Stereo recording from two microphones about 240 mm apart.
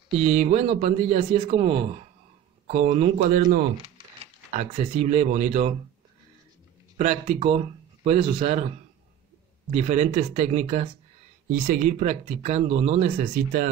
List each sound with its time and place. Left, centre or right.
0.2 s speech: right
3.8 s speech: right
7.0 s speech: right
9.7 s speech: right